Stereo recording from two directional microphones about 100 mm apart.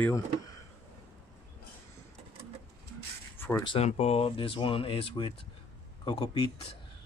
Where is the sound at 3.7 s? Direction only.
90° left; by 5.3 s 60° left (ahead or behind).